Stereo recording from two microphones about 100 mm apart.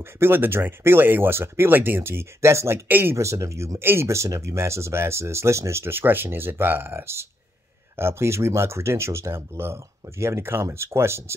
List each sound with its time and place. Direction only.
0.0 s speech: 25° right (ahead or behind)